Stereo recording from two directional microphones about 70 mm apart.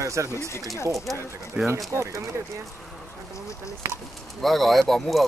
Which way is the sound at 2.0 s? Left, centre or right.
Right.